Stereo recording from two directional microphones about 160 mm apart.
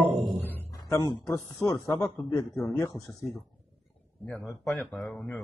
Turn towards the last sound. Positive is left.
turn(degrees=5)  # may be behind; listen again after turning